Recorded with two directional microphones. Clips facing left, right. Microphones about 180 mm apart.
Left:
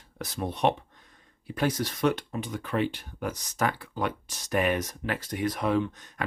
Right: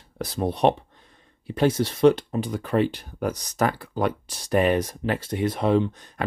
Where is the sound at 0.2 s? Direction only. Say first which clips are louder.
Right 5 dB; 35° right (ahead or behind).